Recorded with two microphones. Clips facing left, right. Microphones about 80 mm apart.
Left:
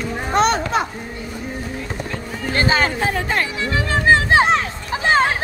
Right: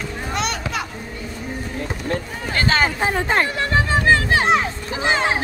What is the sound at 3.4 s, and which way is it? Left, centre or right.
Speech, right.